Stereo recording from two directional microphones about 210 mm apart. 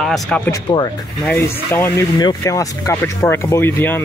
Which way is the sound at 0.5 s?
20° left (ahead or behind).